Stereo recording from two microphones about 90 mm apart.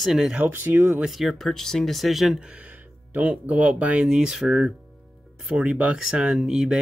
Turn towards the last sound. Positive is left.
turn(degrees=-5)  # may be behind; listen again after turning